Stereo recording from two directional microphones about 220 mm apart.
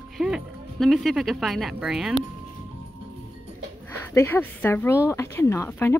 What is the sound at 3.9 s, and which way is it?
Speech, 10° left (ahead or behind).